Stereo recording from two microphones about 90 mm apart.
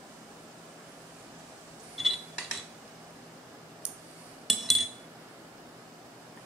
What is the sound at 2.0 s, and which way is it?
Mechanisms, 5° right (ahead or behind).